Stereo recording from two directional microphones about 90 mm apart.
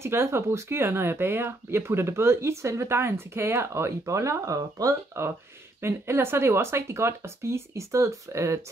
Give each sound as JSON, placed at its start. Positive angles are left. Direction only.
{"t": 0.0, "sound": "speech", "side_deg": -30}